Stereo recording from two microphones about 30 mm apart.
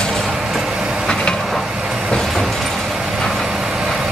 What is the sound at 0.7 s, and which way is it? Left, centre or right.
Vehicle, right.